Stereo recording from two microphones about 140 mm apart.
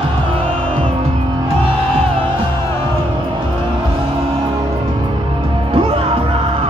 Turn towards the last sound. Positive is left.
turn(degrees=-40)  # may be behind; listen again after turning